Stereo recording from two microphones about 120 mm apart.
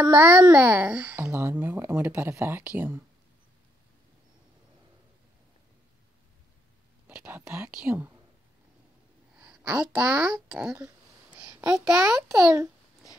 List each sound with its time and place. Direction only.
0.1 s speech: 10° right (ahead or behind)
7.1 s speech: 10° right (ahead or behind)
9.4 s a sound: 5° right (ahead or behind)
9.8 s speech: 5° right (ahead or behind)
12.0 s a child's voice: 25° right (ahead or behind)